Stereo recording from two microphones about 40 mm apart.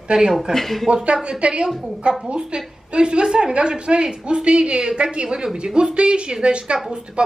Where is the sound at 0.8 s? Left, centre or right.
Right.